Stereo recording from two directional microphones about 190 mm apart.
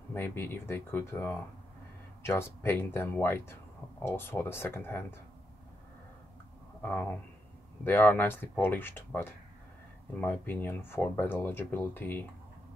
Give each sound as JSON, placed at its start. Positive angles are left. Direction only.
{"t": 0.1, "sound": "speech", "side_deg": 10}
{"t": 6.8, "sound": "speech", "side_deg": 10}